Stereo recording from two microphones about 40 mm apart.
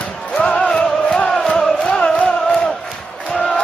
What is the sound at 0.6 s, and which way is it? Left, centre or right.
Music, left.